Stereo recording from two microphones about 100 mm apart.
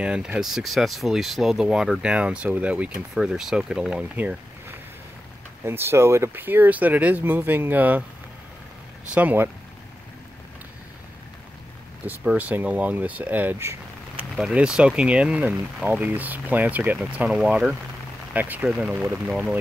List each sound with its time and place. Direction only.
0.0 s speech: 10° right (ahead or behind)
9.1 s speech: 20° right (ahead or behind)
12.1 s speech: 15° right (ahead or behind)
14.1 s speech: 5° right (ahead or behind)
18.3 s speech: 15° right (ahead or behind)